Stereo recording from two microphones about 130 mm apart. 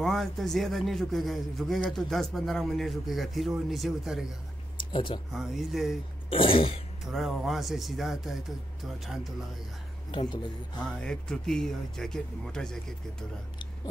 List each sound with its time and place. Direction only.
0.0 s a man's voice: centre (ahead or behind)
4.7 s a sound: 40° left (ahead or behind)
5.3 s a man's voice: centre (ahead or behind)
6.3 s throat clearing: 45° left (ahead or behind)
7.1 s a man's voice: centre (ahead or behind)
10.1 s a man's voice: 35° left (ahead or behind)
11.0 s a man's voice: 5° left (ahead or behind)